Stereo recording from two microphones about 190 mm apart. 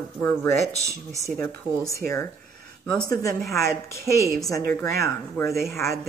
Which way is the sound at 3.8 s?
55° right (ahead or behind).